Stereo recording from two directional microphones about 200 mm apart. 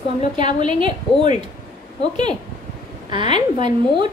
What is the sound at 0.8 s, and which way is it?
Speech, 25° right (ahead or behind).